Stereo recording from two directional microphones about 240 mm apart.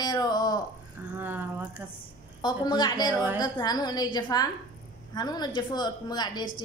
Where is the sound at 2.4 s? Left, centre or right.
Centre.